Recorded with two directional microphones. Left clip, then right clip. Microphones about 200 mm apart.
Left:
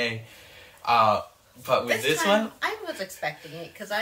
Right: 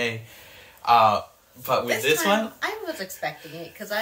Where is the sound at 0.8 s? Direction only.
20° right (ahead or behind).